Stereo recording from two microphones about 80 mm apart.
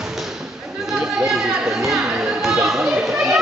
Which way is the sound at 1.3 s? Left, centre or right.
Centre.